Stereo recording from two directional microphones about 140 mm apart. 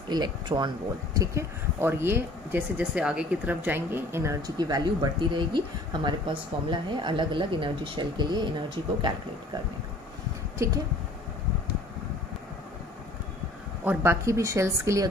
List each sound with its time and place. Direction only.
0.1 s speech: 30° right (ahead or behind)
10.6 s speech: 20° right (ahead or behind)
13.8 s speech: 20° right (ahead or behind)